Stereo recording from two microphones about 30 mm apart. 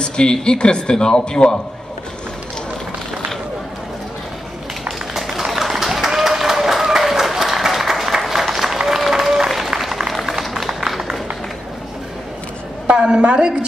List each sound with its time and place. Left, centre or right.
0.0 s speech: left
4.8 s run: centre
5.5 s applause: centre
9.8 s a sound: centre
12.9 s a woman's voice: right